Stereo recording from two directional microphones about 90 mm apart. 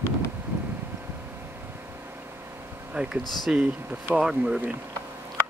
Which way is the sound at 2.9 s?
10° right (ahead or behind).